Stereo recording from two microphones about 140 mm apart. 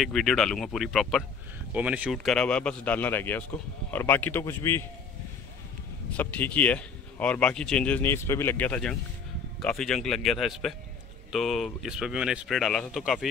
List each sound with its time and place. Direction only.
0.0 s speech: centre (ahead or behind)
1.7 s speech: 10° right (ahead or behind)
2.1 s speech: 5° left (ahead or behind)
6.1 s speech: 10° left (ahead or behind)